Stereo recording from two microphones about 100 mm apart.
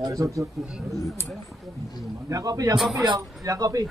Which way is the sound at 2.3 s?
35° right (ahead or behind).